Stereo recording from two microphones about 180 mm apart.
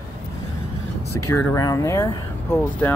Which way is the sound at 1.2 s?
15° left (ahead or behind).